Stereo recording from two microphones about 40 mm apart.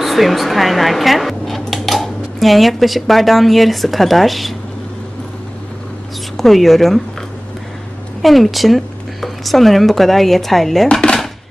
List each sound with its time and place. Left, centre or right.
0.0 s speech: centre
6.3 s speech: centre
8.2 s speech: centre
10.9 s dishes: left